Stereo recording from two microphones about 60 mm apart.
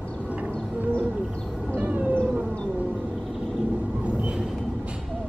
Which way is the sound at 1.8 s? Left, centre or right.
Right.